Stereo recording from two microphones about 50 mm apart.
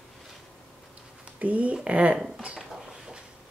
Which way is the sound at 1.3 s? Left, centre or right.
Right.